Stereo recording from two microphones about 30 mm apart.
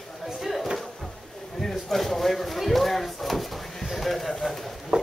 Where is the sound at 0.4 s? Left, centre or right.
Centre.